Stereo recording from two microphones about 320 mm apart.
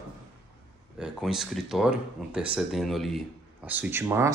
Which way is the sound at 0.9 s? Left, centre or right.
Centre.